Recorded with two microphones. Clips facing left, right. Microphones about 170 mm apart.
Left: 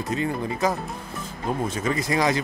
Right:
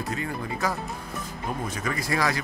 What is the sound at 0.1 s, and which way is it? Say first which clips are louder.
Speech: left 9 dB; 20° left (ahead or behind).